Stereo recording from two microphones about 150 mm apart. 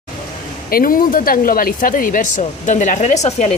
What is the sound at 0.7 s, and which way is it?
A woman's voice, 75° left (ahead or behind).